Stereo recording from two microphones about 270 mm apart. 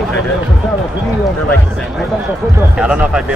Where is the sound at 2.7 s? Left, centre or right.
Centre.